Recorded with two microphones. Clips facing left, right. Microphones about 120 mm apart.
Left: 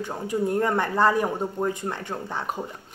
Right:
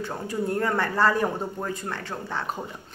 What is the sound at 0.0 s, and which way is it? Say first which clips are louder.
A man's voice: left 2 dB; 15° left (ahead or behind).